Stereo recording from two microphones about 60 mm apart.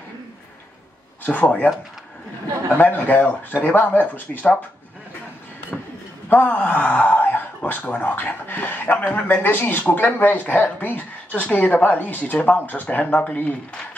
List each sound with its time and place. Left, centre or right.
1.2 s speech: left
2.8 s speech: left
5.7 s a sound: centre
6.2 s speech: left